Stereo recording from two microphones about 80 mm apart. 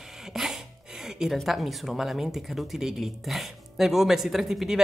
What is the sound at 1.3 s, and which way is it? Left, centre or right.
Speech, centre.